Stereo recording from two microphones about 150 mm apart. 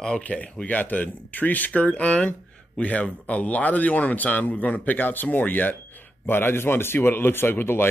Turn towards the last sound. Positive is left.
turn(degrees=15)  # may be behind; listen again after turning